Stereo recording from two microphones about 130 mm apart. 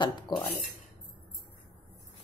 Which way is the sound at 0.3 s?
35° left (ahead or behind).